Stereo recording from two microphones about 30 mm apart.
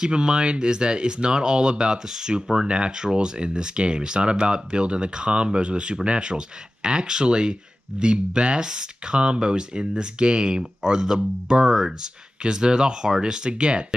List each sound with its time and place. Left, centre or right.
0.0 s speech: right
2.6 s speech: right